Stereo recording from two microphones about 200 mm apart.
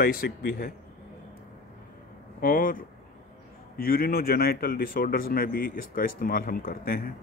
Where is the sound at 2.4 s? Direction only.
45° left (ahead or behind).